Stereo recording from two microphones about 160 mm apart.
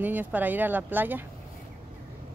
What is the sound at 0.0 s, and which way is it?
Speech, 10° right (ahead or behind).